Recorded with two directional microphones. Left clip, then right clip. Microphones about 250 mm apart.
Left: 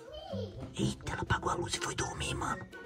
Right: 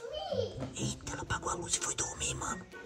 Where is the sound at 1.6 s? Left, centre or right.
Left.